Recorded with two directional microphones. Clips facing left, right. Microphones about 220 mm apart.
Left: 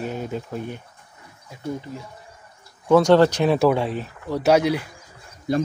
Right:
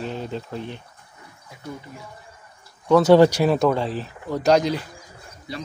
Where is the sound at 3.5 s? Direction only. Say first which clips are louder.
Left 1 dB; 5° left (ahead or behind).